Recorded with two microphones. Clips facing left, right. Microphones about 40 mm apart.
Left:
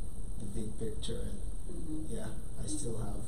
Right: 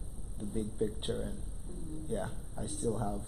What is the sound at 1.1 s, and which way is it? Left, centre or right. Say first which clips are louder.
A man's voice: right 5 dB; centre.